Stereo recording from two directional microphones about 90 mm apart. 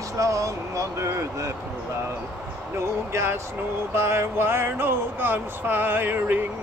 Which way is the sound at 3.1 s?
30° right (ahead or behind).